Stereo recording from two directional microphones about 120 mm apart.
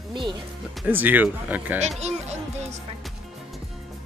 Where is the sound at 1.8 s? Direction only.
65° right (ahead or behind).